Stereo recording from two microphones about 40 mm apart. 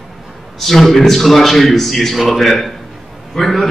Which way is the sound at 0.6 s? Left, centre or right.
Centre.